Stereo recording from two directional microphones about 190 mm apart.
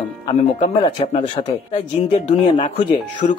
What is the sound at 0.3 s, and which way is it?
Speech, 30° left (ahead or behind).